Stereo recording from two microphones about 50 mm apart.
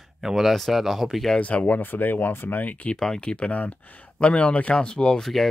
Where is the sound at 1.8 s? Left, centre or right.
Left.